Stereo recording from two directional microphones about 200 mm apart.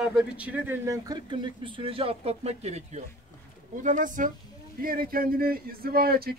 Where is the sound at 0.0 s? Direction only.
5° right (ahead or behind).